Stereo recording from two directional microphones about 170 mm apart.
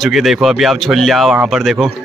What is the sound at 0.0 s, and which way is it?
Music, centre (ahead or behind).